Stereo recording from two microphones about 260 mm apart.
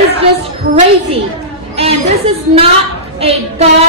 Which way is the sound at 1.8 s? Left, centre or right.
Right.